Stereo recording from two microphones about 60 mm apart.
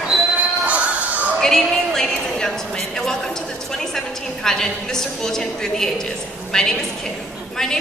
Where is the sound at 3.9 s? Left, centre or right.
Centre.